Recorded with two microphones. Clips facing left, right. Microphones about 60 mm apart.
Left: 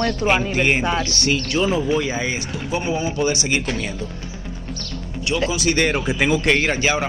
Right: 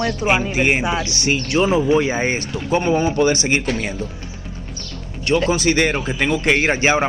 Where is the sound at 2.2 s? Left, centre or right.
Right.